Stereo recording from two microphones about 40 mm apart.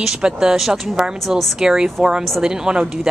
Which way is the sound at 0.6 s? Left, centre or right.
Centre.